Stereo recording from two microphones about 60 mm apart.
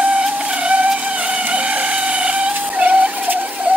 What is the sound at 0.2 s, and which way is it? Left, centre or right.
Vehicle, centre.